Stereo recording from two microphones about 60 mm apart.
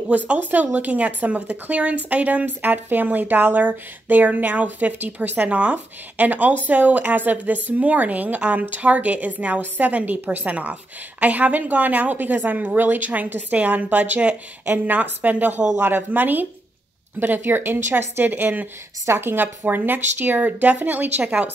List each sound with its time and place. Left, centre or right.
0.3 s speech: right